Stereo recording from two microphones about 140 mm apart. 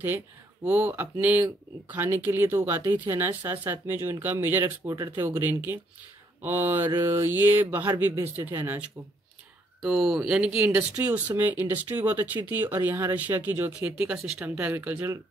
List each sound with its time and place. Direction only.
0.7 s speech: 15° right (ahead or behind)
9.8 s speech: centre (ahead or behind); by 15.1 s 15° right (ahead or behind)